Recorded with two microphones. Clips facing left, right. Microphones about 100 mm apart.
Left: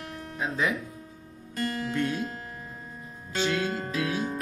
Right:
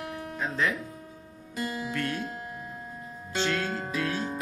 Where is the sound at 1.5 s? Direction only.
10° right (ahead or behind).